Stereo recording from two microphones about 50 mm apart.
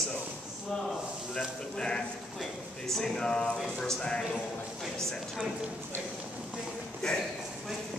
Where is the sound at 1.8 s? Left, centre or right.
Centre.